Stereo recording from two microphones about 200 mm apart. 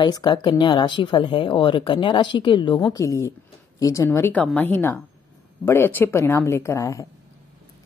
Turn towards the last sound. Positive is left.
turn(degrees=15)  # may be behind; listen again after turning